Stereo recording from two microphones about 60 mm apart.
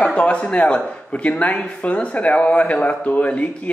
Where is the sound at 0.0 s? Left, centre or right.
Centre.